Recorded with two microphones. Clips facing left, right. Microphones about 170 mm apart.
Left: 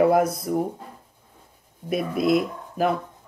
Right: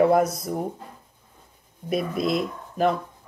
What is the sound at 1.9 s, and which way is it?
Speech, 5° left (ahead or behind).